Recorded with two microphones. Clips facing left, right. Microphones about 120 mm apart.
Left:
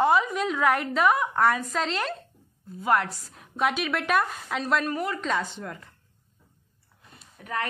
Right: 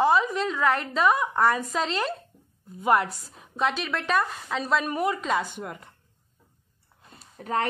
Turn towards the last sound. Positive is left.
turn(degrees=-30)  # may be behind; listen again after turning